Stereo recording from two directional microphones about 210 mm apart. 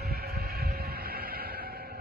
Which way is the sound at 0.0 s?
50° right (ahead or behind).